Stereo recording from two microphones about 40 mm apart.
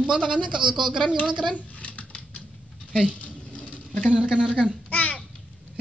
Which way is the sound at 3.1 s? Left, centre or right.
Left.